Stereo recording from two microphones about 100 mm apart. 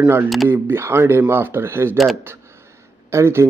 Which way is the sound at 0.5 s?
25° right (ahead or behind).